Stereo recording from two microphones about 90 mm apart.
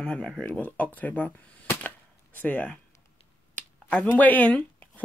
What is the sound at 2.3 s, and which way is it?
Speech, 20° left (ahead or behind).